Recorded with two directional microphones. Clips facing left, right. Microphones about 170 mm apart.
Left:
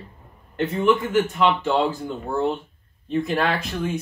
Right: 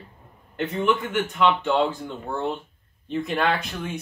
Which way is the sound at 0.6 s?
Centre (ahead or behind).